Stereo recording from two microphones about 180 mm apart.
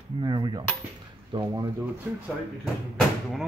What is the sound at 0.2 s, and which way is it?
Speech, 20° right (ahead or behind).